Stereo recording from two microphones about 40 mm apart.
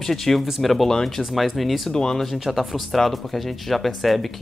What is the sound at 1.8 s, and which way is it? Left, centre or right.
Speech, centre.